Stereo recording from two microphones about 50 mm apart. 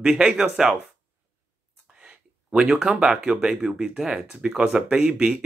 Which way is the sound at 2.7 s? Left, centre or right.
Centre.